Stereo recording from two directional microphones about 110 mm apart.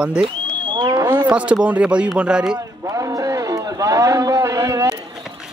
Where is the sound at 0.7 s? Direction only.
45° right (ahead or behind).